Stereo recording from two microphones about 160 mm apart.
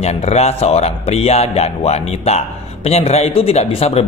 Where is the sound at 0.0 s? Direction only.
40° left (ahead or behind).